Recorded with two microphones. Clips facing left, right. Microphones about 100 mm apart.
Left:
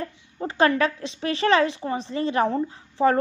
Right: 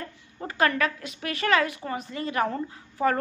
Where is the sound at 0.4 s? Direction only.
25° left (ahead or behind).